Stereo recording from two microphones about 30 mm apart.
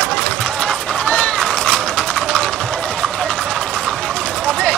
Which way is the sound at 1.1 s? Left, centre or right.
Left.